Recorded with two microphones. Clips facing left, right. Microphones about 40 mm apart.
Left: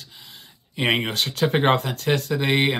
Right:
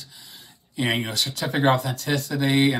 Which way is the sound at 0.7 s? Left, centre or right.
Left.